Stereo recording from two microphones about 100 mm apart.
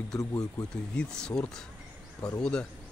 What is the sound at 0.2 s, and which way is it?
Speech, 35° left (ahead or behind).